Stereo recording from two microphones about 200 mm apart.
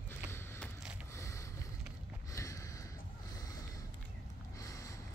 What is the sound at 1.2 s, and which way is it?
Boat, 15° left (ahead or behind).